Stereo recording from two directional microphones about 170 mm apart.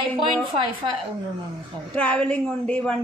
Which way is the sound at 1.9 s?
5° left (ahead or behind).